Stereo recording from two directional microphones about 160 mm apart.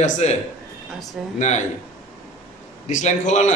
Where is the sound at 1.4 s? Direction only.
45° left (ahead or behind).